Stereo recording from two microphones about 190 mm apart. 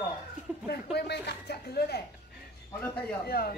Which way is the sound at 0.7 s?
60° left (ahead or behind).